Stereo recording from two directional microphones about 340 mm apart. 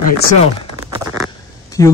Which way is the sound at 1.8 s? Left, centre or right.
Centre.